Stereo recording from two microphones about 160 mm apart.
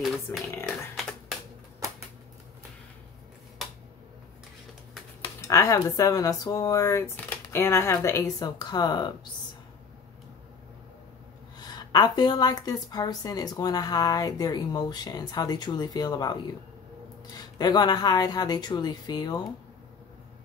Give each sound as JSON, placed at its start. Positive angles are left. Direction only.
{"t": 0.3, "sound": "speech", "side_deg": 10}
{"t": 5.5, "sound": "a woman's voice", "side_deg": 20}
{"t": 11.5, "sound": "a woman's voice", "side_deg": 25}
{"t": 17.4, "sound": "a woman's voice", "side_deg": 25}